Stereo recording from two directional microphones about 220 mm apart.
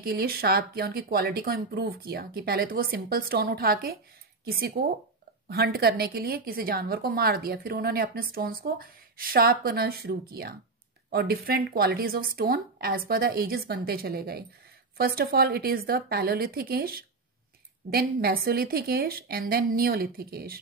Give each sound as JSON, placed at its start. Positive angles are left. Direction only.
{"t": 0.0, "sound": "a woman's voice", "side_deg": -45}